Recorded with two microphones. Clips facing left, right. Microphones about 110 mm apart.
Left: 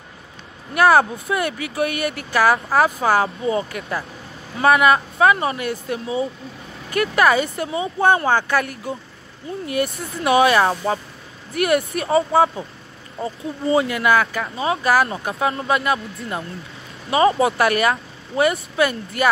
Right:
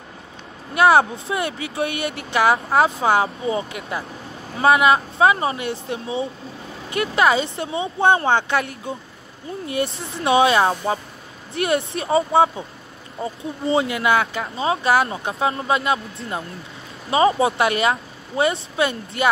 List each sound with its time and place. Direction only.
0.7 s speech: 25° right (ahead or behind)